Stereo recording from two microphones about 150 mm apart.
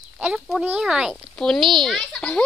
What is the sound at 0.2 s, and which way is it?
Speech, 5° right (ahead or behind).